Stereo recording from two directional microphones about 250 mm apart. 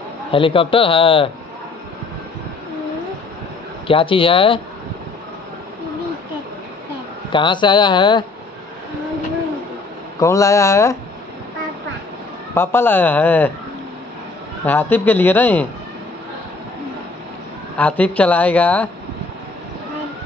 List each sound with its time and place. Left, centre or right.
0.3 s a man's voice: left
3.8 s a man's voice: left
7.3 s speech: centre
10.2 s speech: centre
12.5 s speech: centre
14.7 s speech: centre
17.7 s speech: centre